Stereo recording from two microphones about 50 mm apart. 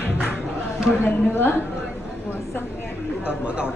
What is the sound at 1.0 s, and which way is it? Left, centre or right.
Speech, left.